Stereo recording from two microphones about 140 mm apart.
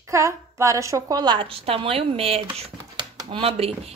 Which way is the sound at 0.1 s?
20° right (ahead or behind).